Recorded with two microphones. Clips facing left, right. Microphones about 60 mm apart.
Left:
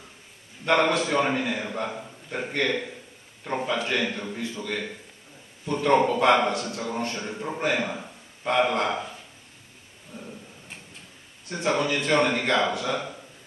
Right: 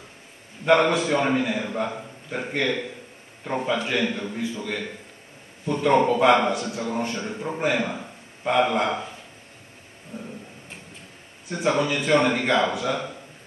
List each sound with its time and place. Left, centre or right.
0.7 s a man's voice: centre
5.7 s a man's voice: centre
11.4 s a man's voice: centre